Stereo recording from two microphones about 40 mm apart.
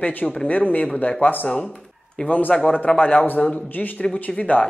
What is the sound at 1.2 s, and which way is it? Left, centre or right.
Speech, left.